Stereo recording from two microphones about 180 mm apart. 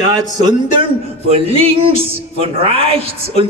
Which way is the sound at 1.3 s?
30° right (ahead or behind).